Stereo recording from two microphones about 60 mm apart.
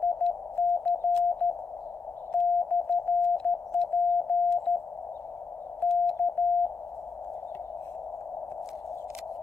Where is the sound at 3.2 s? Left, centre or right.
Centre.